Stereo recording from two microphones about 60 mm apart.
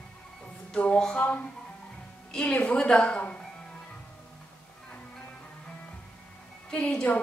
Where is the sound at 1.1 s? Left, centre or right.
Left.